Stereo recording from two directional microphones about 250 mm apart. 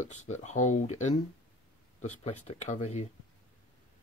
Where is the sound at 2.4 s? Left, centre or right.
Left.